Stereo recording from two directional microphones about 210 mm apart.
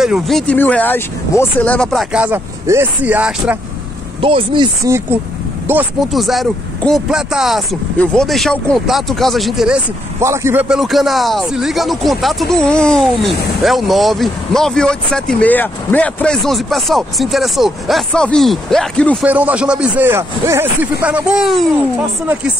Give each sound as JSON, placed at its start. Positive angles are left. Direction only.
{"t": 0.0, "sound": "speech", "side_deg": 0}
{"t": 4.2, "sound": "speech", "side_deg": -25}
{"t": 4.8, "sound": "a man's voice", "side_deg": -10}
{"t": 10.2, "sound": "a man's voice", "side_deg": -15}